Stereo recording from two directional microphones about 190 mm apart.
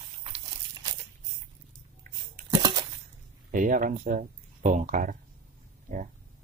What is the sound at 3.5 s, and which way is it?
Speech, 45° right (ahead or behind).